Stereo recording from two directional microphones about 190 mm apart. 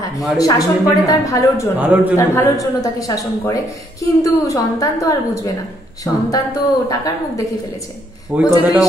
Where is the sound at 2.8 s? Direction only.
20° left (ahead or behind).